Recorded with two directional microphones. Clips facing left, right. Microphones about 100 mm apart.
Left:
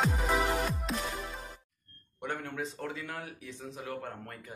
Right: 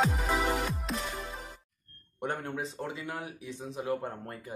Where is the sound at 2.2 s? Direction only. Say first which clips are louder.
Right 3 dB; 35° right (ahead or behind).